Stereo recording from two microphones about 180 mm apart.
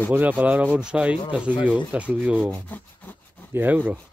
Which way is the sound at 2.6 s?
10° left (ahead or behind).